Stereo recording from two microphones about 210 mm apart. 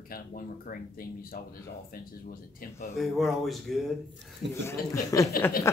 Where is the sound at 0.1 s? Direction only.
45° left (ahead or behind).